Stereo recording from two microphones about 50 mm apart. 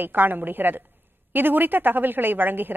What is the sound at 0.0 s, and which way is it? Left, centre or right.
A woman's voice, right.